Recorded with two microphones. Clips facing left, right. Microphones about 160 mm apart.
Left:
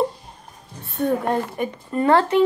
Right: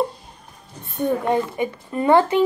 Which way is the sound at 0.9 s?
Centre (ahead or behind).